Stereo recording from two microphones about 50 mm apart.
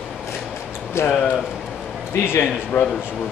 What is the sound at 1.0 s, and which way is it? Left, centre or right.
Speech, left.